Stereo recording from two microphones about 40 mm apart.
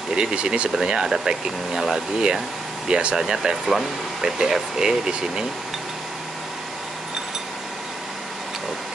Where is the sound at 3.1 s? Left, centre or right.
Centre.